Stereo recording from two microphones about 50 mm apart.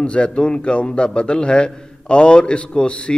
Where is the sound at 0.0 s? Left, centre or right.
Left.